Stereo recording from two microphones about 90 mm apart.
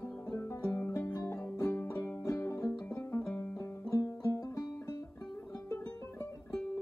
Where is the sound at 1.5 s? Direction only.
35° left (ahead or behind).